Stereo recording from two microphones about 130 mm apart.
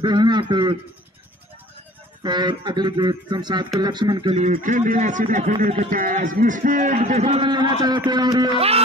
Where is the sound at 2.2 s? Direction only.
35° right (ahead or behind).